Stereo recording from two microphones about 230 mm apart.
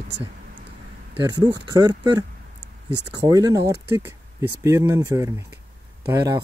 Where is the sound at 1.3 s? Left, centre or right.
Centre.